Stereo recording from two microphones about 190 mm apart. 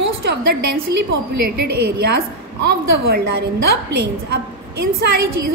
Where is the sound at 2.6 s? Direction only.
55° right (ahead or behind).